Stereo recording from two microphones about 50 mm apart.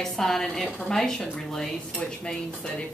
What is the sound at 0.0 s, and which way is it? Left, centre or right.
Speech, centre.